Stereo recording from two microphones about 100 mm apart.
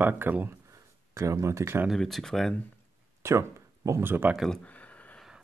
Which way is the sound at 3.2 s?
30° right (ahead or behind).